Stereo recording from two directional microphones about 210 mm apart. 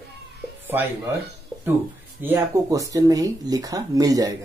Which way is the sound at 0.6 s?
10° right (ahead or behind).